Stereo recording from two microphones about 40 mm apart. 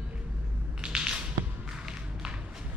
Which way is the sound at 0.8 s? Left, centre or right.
Centre.